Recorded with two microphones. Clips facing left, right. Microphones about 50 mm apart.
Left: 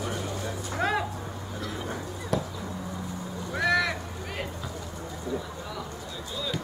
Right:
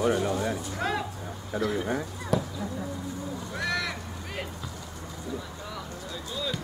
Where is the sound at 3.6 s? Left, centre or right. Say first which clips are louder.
Left 6 dB; centre.